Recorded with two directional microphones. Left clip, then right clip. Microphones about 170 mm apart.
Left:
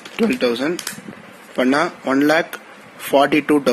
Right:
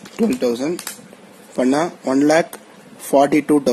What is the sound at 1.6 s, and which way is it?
Speech, centre (ahead or behind).